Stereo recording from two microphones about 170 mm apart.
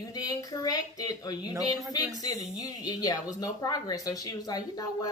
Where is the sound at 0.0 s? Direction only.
20° left (ahead or behind).